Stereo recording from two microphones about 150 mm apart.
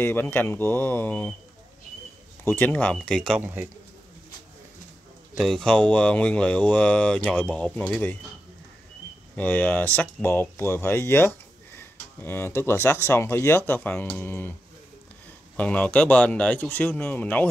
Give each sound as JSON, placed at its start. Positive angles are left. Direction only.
{"t": 0.0, "sound": "speech", "side_deg": 15}
{"t": 2.4, "sound": "speech", "side_deg": 15}
{"t": 3.3, "sound": "a man's voice", "side_deg": -10}
{"t": 5.4, "sound": "speech", "side_deg": 5}
{"t": 9.3, "sound": "speech", "side_deg": 10}
{"t": 15.5, "sound": "speech", "side_deg": 10}